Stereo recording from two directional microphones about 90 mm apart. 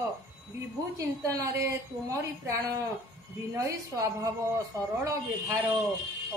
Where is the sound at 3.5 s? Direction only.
40° right (ahead or behind).